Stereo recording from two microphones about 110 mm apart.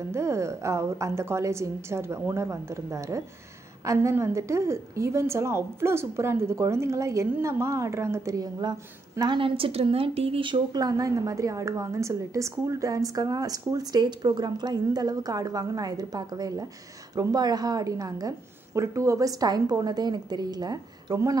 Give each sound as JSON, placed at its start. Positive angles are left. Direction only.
{"t": 0.1, "sound": "a woman's voice", "side_deg": -25}
{"t": 9.2, "sound": "speech", "side_deg": -50}